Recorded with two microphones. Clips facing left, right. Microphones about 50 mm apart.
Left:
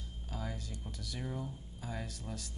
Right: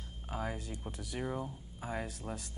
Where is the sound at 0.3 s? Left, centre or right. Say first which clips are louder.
Right 5 dB; right.